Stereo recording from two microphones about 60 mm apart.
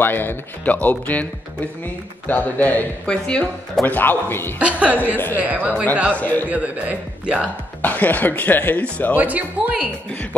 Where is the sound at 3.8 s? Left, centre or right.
Left.